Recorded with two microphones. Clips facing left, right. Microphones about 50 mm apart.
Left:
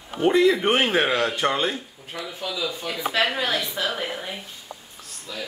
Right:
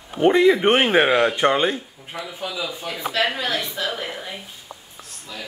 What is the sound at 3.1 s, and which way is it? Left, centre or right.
A woman's voice, centre.